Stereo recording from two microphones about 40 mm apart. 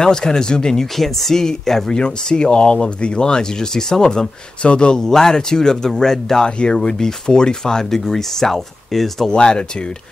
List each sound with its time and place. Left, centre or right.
0.0 s speech: centre
0.9 s speech: centre
6.4 s speech: left; by 9.3 s centre
9.3 s speech: left